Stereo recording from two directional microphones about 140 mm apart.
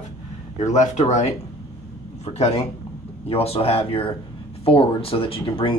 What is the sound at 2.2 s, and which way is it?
Speech, 50° left (ahead or behind).